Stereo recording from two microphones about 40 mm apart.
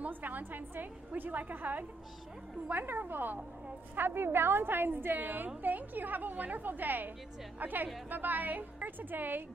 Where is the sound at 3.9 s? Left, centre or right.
Right.